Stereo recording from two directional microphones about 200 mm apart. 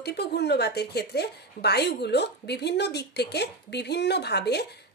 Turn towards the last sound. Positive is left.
turn(degrees=55)  # may be behind; listen again after turning